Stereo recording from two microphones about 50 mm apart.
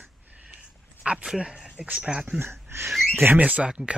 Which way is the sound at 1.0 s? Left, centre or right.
Right.